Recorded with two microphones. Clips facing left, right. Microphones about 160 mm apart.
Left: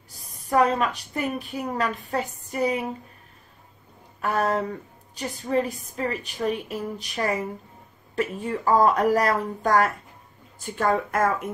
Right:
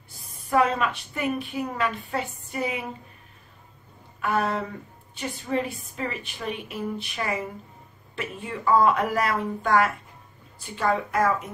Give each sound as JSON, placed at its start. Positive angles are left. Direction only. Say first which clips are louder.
{"t": 0.5, "sound": "a woman's voice", "louder": "left 1 dB", "side_deg": 40}
{"t": 4.2, "sound": "a woman's voice", "louder": "left 2 dB", "side_deg": 40}